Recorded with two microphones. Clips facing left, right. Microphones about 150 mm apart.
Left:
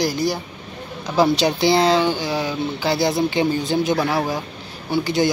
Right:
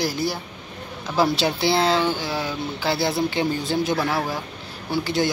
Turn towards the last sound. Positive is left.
turn(degrees=0)  # may be behind; listen again after turning